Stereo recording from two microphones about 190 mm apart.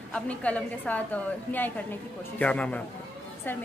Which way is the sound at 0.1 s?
5° left (ahead or behind).